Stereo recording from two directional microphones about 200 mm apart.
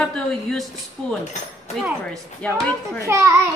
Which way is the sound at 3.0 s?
15° right (ahead or behind).